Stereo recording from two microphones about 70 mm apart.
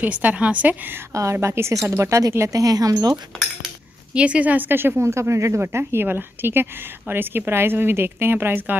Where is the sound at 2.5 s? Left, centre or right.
Right.